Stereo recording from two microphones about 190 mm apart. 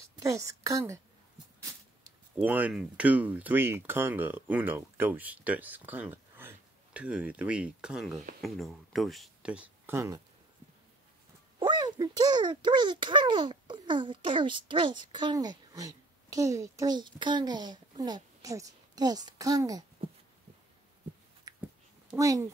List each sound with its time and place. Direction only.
0.2 s a woman's voice: 15° right (ahead or behind)
2.0 s speech: 10° right (ahead or behind)
11.6 s a child's voice: 20° right (ahead or behind)
21.5 s a sound: 20° right (ahead or behind)
22.1 s speech: 15° right (ahead or behind)